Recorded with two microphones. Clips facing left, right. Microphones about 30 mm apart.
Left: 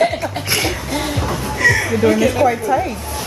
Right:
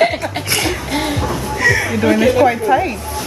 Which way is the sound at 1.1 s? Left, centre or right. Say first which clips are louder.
Right 1 dB; centre.